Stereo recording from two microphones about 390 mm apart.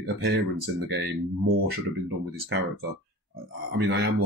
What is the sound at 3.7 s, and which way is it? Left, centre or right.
Speech, right.